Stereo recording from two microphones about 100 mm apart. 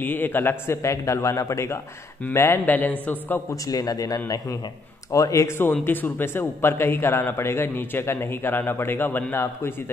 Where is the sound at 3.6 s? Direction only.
40° left (ahead or behind).